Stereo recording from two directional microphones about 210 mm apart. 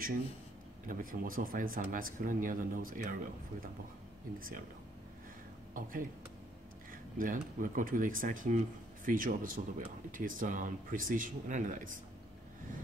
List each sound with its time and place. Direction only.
0.8 s speech: 40° right (ahead or behind)
5.8 s speech: 40° right (ahead or behind)